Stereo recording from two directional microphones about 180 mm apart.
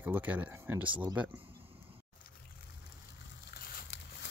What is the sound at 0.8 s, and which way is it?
Speech, 25° right (ahead or behind).